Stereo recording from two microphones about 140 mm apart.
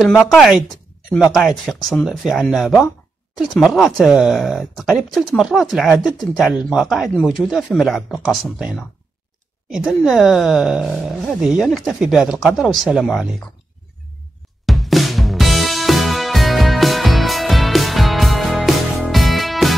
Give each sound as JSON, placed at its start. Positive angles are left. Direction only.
{"t": 0.0, "sound": "speech", "side_deg": 0}
{"t": 14.7, "sound": "music", "side_deg": 0}